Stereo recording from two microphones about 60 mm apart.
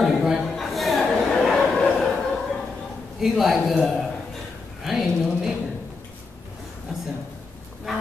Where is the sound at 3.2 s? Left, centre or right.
Centre.